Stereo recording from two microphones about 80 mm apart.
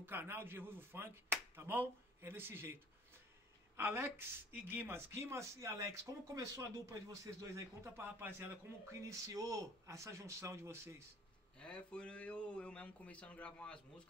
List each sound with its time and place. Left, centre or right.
0.0 s speech: right
11.5 s speech: centre